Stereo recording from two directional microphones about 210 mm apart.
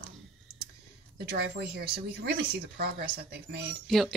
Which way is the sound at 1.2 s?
50° right (ahead or behind).